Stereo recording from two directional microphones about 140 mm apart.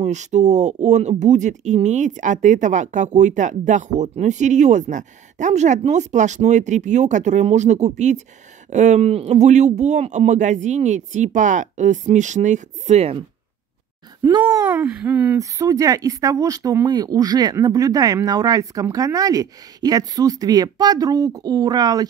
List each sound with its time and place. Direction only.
0.0 s speech: 55° right (ahead or behind)
14.2 s speech: 30° right (ahead or behind)
14.8 s speech: 10° right (ahead or behind)
15.3 s speech: 25° right (ahead or behind)